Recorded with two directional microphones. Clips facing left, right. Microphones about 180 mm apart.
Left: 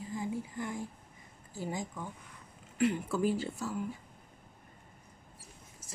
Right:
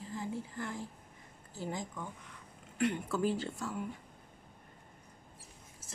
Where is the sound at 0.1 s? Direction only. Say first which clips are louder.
Left 3 dB; 15° left (ahead or behind).